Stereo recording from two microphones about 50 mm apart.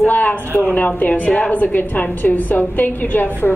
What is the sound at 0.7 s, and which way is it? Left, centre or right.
A woman's voice, left.